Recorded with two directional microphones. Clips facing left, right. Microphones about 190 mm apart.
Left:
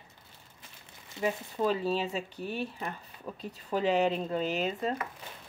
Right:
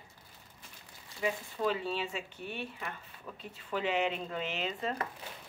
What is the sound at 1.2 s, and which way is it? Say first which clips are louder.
Speech: left 3 dB; 40° left (ahead or behind).